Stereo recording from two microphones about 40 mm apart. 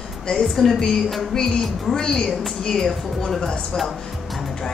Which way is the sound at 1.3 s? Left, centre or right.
Centre.